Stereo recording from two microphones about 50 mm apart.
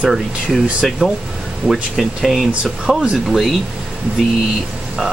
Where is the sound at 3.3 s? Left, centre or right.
Centre.